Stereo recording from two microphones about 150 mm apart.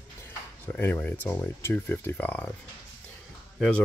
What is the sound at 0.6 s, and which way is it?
Speech, 15° left (ahead or behind).